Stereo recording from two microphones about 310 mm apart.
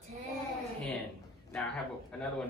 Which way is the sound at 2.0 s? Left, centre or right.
Centre.